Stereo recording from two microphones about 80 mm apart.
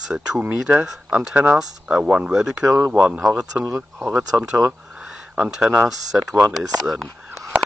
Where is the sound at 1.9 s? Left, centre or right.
Centre.